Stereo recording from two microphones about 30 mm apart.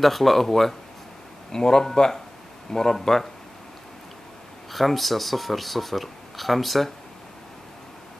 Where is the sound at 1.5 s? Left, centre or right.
Left.